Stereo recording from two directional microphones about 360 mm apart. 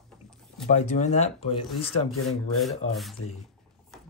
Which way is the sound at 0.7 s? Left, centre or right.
Centre.